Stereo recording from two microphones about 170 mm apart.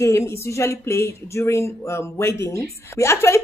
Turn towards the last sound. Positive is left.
turn(degrees=15)  # may be behind; listen again after turning